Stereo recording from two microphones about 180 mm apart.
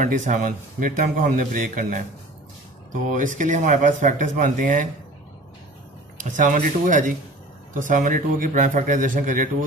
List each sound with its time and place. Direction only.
0.0 s speech: 45° right (ahead or behind)
3.2 s speech: 45° right (ahead or behind)
6.2 s speech: 45° right (ahead or behind)